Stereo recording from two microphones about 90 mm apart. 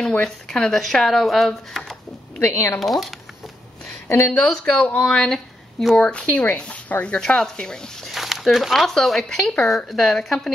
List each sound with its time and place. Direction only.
0.2 s speech: 5° left (ahead or behind)
2.5 s speech: 35° left (ahead or behind)
2.8 s speech: centre (ahead or behind)
4.3 s speech: 10° left (ahead or behind)
5.9 s speech: 15° left (ahead or behind)